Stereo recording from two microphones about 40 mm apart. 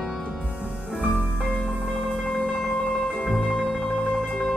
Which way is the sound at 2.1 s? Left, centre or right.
Left.